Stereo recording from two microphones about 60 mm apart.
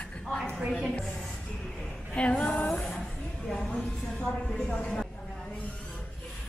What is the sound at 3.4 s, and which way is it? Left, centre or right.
A woman's voice, centre.